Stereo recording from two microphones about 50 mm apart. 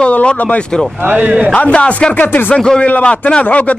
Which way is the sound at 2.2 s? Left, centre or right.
Left.